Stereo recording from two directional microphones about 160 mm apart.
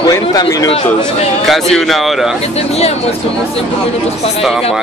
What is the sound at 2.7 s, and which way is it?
Speech, 40° left (ahead or behind).